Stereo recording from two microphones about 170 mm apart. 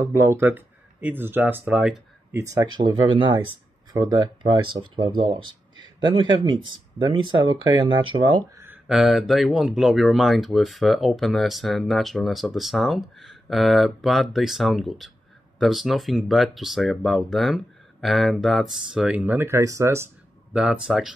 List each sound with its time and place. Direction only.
0.0 s speech: 15° right (ahead or behind)
2.3 s speech: 20° right (ahead or behind)
8.8 s speech: centre (ahead or behind)